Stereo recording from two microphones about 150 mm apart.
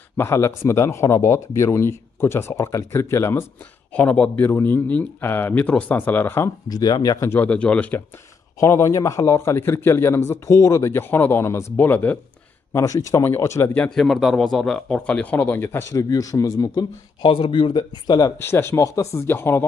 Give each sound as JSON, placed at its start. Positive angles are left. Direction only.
{"t": 0.2, "sound": "speech", "side_deg": 15}
{"t": 13.7, "sound": "speech", "side_deg": 5}
{"t": 17.3, "sound": "speech", "side_deg": 35}
{"t": 18.4, "sound": "speech", "side_deg": 15}